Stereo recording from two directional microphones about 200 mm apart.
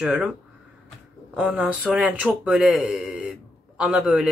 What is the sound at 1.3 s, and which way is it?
Speech, 5° right (ahead or behind).